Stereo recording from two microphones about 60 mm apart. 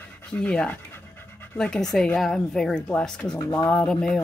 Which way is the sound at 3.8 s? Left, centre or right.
Centre.